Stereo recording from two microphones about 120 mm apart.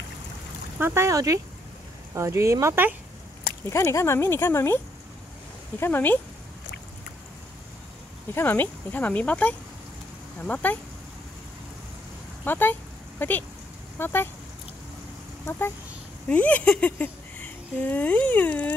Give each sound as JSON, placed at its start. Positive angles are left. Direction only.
{"t": 0.7, "sound": "speech", "side_deg": -20}
{"t": 3.7, "sound": "speech", "side_deg": 25}
{"t": 5.8, "sound": "speech", "side_deg": 15}
{"t": 8.4, "sound": "speech", "side_deg": 15}
{"t": 12.4, "sound": "speech", "side_deg": 15}
{"t": 16.3, "sound": "a sound", "side_deg": 10}